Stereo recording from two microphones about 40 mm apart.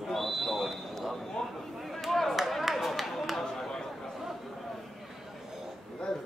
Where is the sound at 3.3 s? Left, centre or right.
Centre.